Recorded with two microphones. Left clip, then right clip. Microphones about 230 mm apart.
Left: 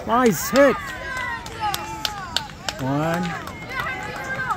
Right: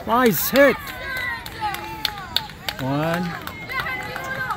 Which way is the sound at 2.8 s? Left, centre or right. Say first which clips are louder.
Even; centre.